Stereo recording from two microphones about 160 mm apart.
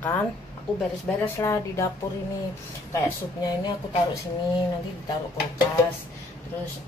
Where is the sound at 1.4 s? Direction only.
20° left (ahead or behind).